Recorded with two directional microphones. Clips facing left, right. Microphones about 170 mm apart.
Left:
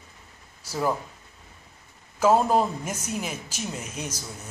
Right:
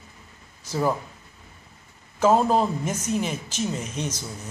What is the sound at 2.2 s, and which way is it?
A woman's voice, 5° left (ahead or behind).